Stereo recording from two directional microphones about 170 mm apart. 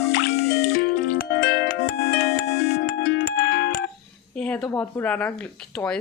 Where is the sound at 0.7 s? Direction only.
65° left (ahead or behind).